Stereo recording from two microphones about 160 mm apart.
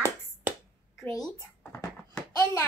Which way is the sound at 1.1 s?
5° left (ahead or behind).